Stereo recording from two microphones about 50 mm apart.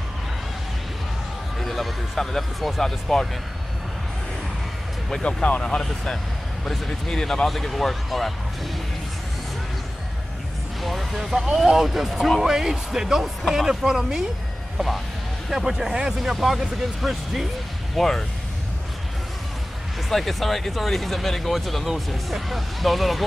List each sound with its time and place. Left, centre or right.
1.6 s speech: centre
5.1 s speech: left
6.6 s speech: centre
10.8 s speech: centre
15.5 s speech: centre
20.1 s speech: centre